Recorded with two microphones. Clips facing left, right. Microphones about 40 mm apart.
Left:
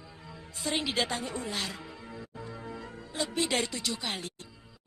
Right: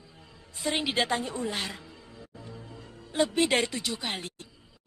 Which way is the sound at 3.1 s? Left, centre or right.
Right.